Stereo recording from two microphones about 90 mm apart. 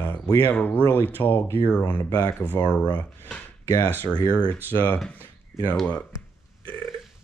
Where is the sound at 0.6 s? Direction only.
20° left (ahead or behind).